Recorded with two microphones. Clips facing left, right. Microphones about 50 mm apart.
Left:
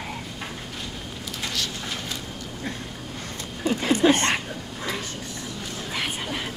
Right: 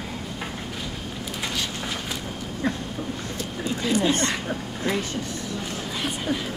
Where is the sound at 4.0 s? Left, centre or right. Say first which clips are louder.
Left 4 dB; left.